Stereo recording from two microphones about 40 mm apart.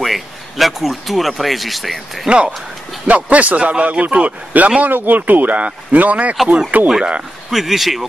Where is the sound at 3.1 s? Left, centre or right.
Right.